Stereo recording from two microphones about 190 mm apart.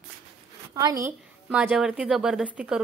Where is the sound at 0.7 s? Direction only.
20° right (ahead or behind).